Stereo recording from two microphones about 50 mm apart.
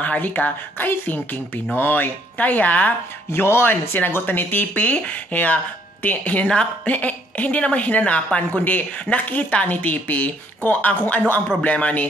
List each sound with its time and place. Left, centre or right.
0.0 s a woman's voice: left
3.3 s a woman's voice: left
6.5 s speech: centre
6.9 s a woman's voice: left